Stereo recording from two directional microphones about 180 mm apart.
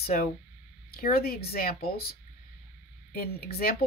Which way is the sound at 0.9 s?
55° left (ahead or behind).